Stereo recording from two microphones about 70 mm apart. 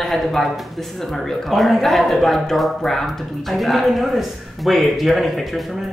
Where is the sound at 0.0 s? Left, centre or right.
Centre.